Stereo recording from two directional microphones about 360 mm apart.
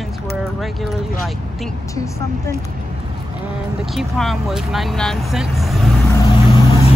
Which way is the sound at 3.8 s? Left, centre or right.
Centre.